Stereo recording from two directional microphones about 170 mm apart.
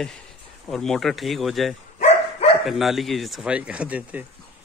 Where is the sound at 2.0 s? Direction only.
40° left (ahead or behind).